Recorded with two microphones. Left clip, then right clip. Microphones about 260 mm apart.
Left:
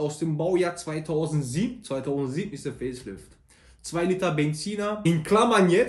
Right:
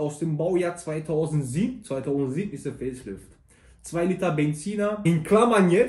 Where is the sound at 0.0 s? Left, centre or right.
Centre.